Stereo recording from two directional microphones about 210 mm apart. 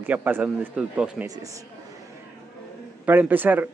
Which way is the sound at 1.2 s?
15° right (ahead or behind).